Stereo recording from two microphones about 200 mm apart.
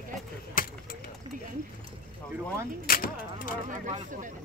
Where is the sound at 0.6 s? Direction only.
45° left (ahead or behind).